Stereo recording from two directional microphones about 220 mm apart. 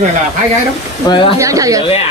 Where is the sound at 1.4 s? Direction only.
15° right (ahead or behind).